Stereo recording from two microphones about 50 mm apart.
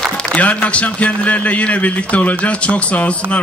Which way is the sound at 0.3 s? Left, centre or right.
Left.